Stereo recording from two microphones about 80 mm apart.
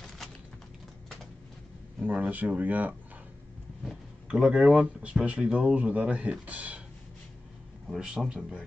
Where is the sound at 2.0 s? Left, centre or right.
Right.